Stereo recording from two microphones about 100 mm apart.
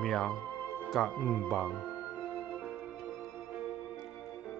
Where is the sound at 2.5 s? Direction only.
15° right (ahead or behind).